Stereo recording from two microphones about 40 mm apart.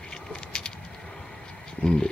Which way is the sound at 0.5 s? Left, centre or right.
Left.